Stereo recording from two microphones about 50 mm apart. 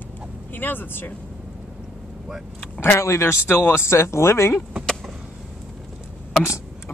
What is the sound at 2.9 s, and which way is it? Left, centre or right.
Speech, left.